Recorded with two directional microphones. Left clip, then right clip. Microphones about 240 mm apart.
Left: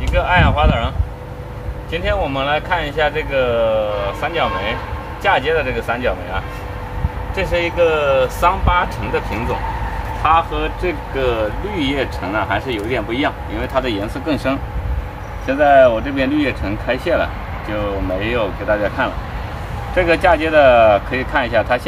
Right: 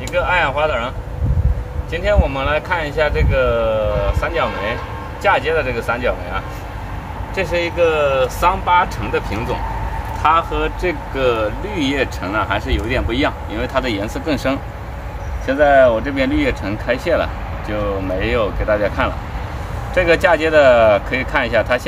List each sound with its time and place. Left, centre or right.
0.1 s speech: centre
10.2 s speech: right